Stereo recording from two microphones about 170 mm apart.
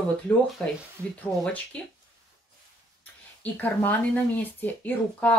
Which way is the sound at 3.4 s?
10° left (ahead or behind).